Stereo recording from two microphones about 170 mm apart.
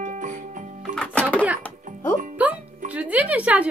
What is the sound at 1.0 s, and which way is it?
Music, 5° left (ahead or behind).